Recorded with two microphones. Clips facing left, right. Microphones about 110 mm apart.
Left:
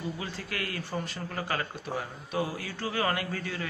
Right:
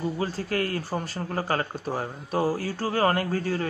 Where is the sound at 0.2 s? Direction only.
40° right (ahead or behind).